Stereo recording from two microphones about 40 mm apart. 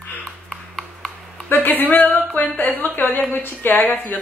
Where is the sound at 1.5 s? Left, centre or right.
Left.